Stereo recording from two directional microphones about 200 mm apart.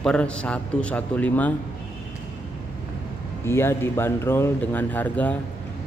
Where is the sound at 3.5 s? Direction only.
10° left (ahead or behind).